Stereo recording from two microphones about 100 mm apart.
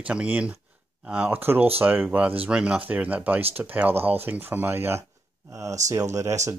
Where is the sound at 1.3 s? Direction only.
20° right (ahead or behind).